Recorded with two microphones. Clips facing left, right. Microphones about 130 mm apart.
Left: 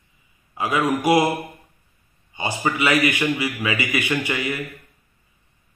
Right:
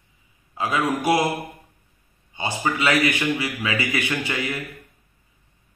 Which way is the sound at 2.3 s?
10° left (ahead or behind).